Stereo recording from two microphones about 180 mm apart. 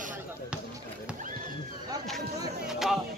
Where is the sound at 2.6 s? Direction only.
Centre (ahead or behind).